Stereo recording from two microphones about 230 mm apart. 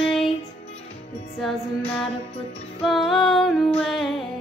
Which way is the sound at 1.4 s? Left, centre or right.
Centre.